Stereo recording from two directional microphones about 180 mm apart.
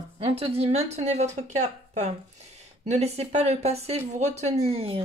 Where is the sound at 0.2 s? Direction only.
35° right (ahead or behind).